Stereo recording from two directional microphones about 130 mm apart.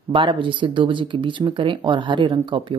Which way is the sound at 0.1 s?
40° right (ahead or behind).